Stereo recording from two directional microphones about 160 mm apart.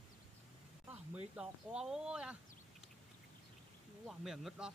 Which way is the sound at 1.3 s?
5° right (ahead or behind).